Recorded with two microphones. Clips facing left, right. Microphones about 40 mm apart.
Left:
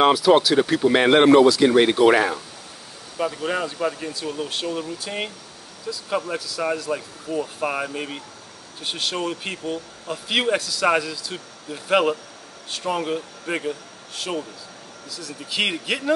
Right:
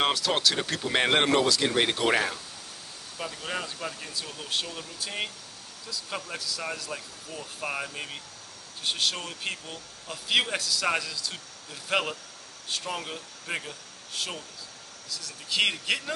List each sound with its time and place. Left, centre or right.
0.0 s a man's voice: centre
6.9 s a man's voice: centre
12.9 s speech: centre
15.0 s speech: centre